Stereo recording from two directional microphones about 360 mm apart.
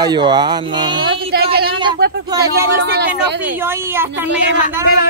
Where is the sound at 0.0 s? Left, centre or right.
Centre.